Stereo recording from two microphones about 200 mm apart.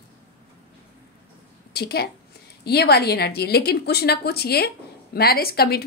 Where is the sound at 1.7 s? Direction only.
55° left (ahead or behind).